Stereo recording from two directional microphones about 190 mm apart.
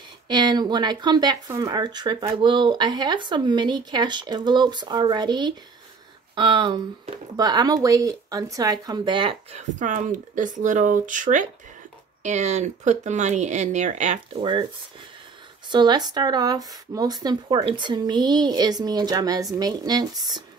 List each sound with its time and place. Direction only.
0.3 s speech: 25° right (ahead or behind)
15.7 s speech: 20° right (ahead or behind)